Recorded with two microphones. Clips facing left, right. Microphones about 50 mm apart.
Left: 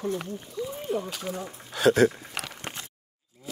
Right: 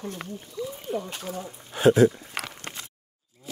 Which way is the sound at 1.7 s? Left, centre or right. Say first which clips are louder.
Right 2 dB; left.